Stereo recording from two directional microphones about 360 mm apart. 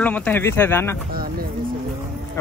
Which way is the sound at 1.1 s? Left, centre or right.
Right.